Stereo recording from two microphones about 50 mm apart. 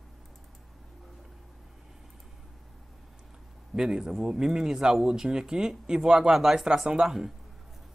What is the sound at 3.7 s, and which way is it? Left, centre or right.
Speech, centre.